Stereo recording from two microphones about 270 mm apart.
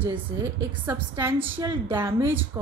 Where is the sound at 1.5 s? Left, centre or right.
Centre.